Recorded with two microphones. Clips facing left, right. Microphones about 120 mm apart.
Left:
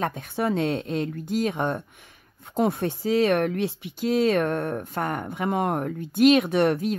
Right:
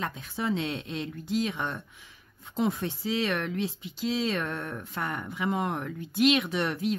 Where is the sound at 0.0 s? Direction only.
55° left (ahead or behind).